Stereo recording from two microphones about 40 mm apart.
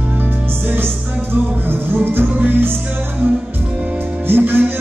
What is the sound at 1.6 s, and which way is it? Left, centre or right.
Music, right.